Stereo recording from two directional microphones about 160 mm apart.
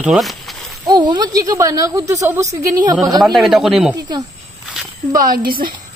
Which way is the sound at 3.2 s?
Centre (ahead or behind).